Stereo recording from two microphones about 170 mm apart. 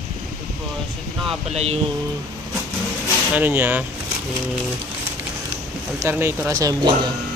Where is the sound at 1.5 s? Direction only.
40° right (ahead or behind).